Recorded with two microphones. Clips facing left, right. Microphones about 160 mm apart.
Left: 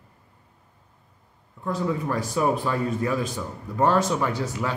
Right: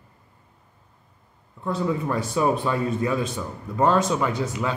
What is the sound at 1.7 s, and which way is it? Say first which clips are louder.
A man's voice: right 1 dB; 25° right (ahead or behind).